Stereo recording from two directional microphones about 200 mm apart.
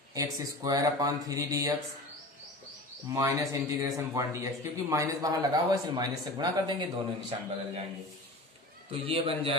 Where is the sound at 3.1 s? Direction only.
15° right (ahead or behind).